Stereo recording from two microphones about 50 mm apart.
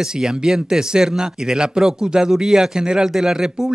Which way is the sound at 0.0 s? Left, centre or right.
Centre.